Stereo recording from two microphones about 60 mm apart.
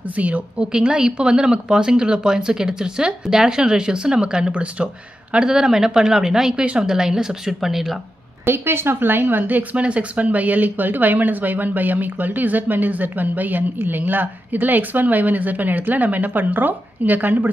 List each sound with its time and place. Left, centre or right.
0.0 s speech: right
0.7 s speech: centre
8.5 s speech: right